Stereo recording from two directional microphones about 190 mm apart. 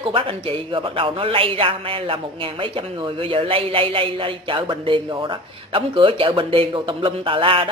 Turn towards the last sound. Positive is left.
turn(degrees=-25)  # may be behind; listen again after turning